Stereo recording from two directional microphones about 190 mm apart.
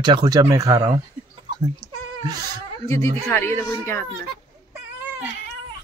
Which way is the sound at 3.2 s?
10° left (ahead or behind).